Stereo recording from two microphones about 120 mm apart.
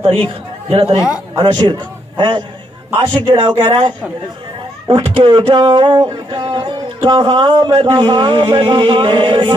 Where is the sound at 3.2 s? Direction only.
40° right (ahead or behind).